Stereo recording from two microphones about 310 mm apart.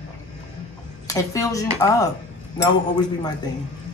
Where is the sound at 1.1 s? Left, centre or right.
Centre.